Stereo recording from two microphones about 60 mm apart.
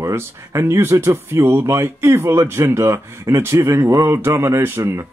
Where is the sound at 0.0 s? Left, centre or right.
Right.